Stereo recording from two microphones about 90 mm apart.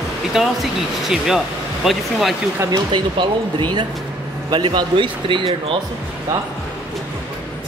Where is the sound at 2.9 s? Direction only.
55° right (ahead or behind).